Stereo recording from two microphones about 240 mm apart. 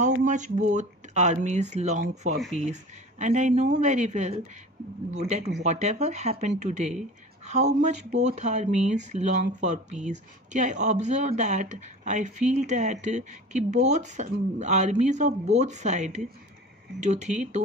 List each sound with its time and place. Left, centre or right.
0.0 s speech: right
5.6 s speech: right